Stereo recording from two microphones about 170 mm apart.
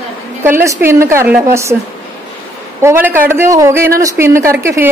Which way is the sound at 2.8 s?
15° right (ahead or behind).